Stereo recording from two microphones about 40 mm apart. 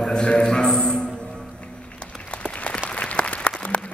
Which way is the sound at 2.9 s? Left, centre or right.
Left.